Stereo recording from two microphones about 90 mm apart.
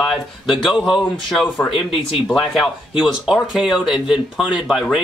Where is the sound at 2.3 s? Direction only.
Centre (ahead or behind).